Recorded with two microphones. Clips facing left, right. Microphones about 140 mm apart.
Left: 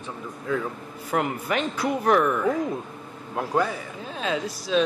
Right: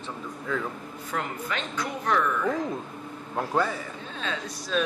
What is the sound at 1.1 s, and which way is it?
Speech, 35° left (ahead or behind).